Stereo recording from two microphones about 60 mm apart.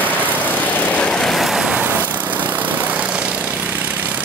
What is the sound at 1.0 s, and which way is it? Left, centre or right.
Vehicle, centre.